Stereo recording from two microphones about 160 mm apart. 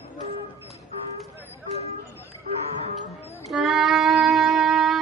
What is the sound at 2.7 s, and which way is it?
Livestock, 40° right (ahead or behind).